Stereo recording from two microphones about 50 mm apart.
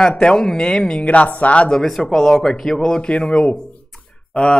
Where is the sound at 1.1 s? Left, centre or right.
Left.